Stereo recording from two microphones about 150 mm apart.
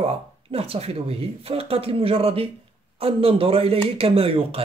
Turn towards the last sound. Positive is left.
turn(degrees=-40)  # may be behind; listen again after turning